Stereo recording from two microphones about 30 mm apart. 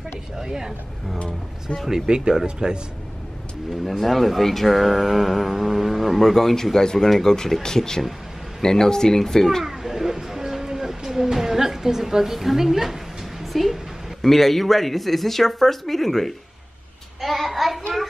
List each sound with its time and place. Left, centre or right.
0.4 s speech: centre
2.0 s speech: right
4.0 s speech: centre
7.6 s speech: left
9.7 s a sound: centre
14.2 s speech: centre
17.2 s child singing: centre